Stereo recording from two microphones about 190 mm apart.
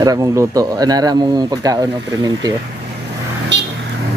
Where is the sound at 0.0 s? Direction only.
20° right (ahead or behind).